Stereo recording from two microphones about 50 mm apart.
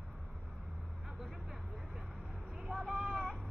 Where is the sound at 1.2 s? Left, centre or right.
Centre.